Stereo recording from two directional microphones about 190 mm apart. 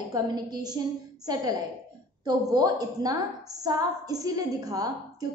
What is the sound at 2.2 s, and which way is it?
A woman's voice, 20° right (ahead or behind).